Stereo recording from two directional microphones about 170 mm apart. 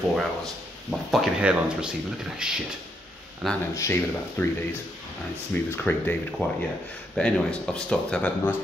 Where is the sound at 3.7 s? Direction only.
15° left (ahead or behind).